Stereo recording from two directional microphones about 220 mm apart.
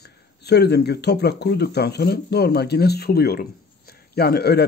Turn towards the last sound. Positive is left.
turn(degrees=45)  # may be behind; listen again after turning